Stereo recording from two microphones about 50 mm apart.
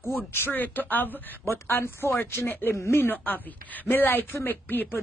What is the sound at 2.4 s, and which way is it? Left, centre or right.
Speech, left.